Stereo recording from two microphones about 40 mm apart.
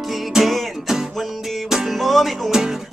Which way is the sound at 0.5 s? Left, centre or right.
Centre.